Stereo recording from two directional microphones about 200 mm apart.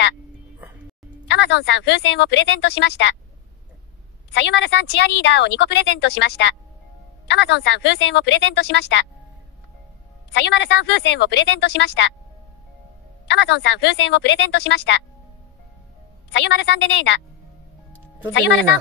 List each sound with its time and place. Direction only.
1.2 s a woman's voice: 60° left (ahead or behind)
4.3 s a woman's voice: 60° left (ahead or behind)
10.3 s a woman's voice: 60° left (ahead or behind)
13.3 s a woman's voice: 60° left (ahead or behind)
16.3 s a woman's voice: 60° left (ahead or behind)
18.3 s a woman's voice: 65° left (ahead or behind)